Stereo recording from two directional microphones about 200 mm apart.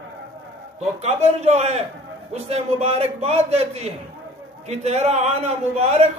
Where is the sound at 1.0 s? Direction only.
35° right (ahead or behind).